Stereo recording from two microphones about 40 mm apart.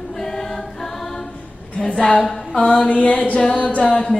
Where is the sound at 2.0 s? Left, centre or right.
Left.